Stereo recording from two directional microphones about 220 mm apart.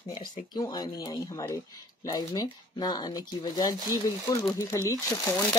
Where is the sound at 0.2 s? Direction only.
20° left (ahead or behind).